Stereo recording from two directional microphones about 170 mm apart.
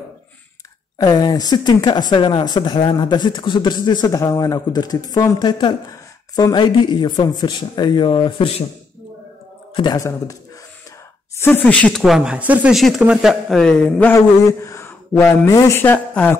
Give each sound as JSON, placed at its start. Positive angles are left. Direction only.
{"t": 0.9, "sound": "speech", "side_deg": 25}
{"t": 9.8, "sound": "speech", "side_deg": 20}
{"t": 11.3, "sound": "speech", "side_deg": 10}
{"t": 12.0, "sound": "speech", "side_deg": -5}